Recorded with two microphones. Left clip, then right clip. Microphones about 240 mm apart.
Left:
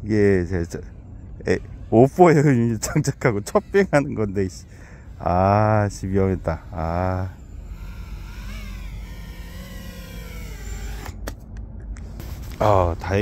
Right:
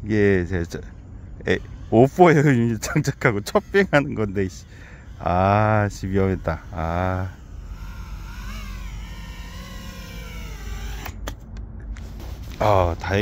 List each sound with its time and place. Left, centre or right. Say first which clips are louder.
0.1 s speech: left 1 dB; centre
8.4 s vehicle: right 2 dB; centre
12.5 s speech: left 1 dB; centre